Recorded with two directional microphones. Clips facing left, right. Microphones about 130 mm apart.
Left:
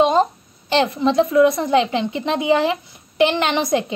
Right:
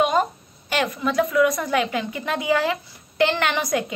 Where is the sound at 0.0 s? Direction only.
25° left (ahead or behind).